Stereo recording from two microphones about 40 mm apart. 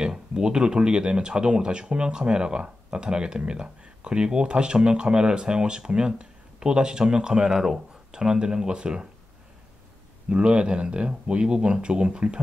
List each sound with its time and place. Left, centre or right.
0.0 s speech: right
10.3 s speech: right